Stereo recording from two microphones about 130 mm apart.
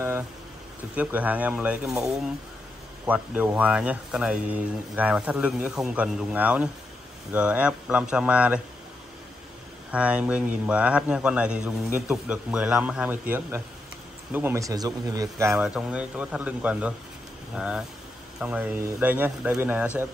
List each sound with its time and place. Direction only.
0.9 s speech: 10° right (ahead or behind)
9.8 s speech: 10° right (ahead or behind)
14.3 s speech: 20° right (ahead or behind)
15.5 s speech: 5° right (ahead or behind)